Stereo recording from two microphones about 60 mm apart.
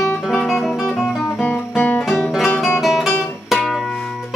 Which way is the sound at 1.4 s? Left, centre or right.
Left.